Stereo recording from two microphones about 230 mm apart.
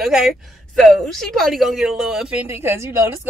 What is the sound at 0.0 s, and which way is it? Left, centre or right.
Music, centre.